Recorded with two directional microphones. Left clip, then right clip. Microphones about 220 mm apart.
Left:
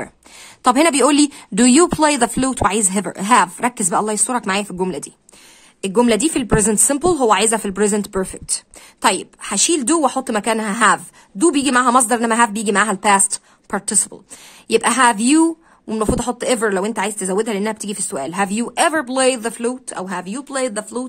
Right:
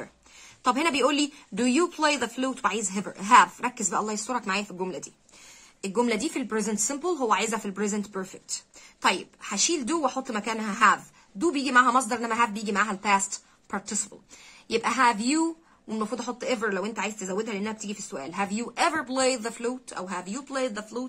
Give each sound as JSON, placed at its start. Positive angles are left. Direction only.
{"t": 0.7, "sound": "a woman's voice", "side_deg": 50}